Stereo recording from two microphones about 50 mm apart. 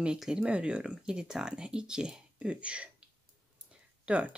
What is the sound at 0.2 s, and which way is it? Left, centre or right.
Speech, centre.